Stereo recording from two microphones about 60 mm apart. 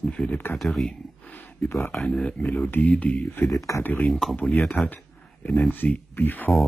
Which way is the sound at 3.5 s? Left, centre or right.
Left.